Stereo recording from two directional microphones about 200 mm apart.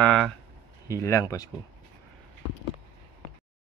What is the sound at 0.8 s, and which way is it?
Speech, 15° left (ahead or behind).